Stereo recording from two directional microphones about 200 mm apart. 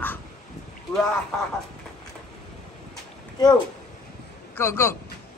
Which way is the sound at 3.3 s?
20° left (ahead or behind).